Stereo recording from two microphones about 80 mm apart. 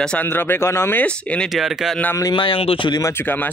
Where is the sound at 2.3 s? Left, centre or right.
Left.